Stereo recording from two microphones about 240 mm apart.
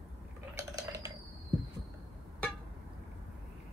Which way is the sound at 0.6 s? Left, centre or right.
Centre.